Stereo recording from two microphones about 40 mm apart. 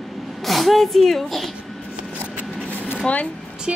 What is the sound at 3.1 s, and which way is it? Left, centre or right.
Speech, left.